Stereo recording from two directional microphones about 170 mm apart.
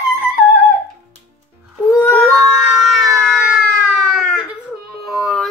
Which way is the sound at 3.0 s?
15° right (ahead or behind).